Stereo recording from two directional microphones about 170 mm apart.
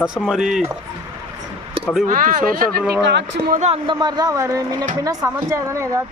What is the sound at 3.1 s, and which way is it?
Speech, 90° right.